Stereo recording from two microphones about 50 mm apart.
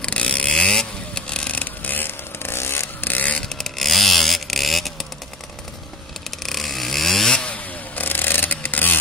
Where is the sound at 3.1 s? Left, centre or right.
Left.